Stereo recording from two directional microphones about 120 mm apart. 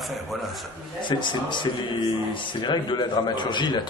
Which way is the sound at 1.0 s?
40° left (ahead or behind).